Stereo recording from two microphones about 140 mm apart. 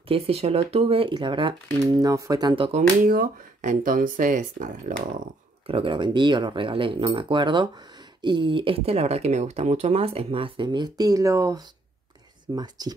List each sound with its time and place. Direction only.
0.1 s speech: 45° right (ahead or behind)
1.8 s speech: 25° right (ahead or behind)
3.1 s speech: 80° right
5.7 s speech: 40° right (ahead or behind)